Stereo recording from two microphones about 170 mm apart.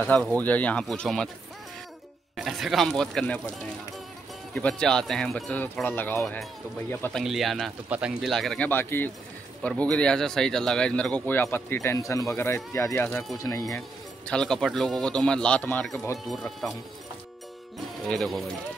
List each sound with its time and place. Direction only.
0.0 s speech: 10° left (ahead or behind)
2.3 s speech: centre (ahead or behind)
4.6 s speech: 5° left (ahead or behind)
7.2 s speech: centre (ahead or behind); by 13.8 s 20° left (ahead or behind)
14.2 s speech: 5° left (ahead or behind)
18.0 s speech: centre (ahead or behind)